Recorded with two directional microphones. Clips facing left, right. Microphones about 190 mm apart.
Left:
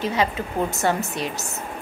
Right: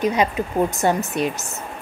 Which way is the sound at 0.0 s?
20° right (ahead or behind).